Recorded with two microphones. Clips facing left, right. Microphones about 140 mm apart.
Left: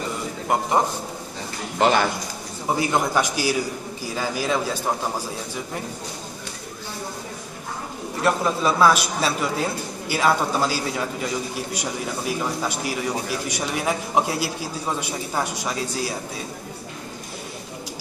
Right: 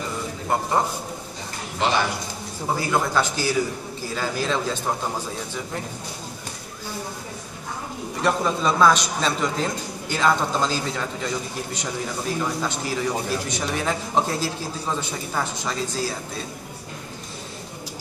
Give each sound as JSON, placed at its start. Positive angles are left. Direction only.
{"t": 1.8, "sound": "a man's voice", "side_deg": 50}
{"t": 2.8, "sound": "a man's voice", "side_deg": 15}
{"t": 8.2, "sound": "a man's voice", "side_deg": 5}